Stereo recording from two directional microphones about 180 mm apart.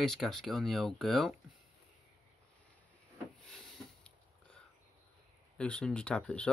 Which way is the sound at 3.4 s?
Centre (ahead or behind).